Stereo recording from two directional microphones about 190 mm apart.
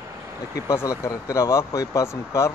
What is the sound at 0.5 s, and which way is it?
Speech, 15° left (ahead or behind).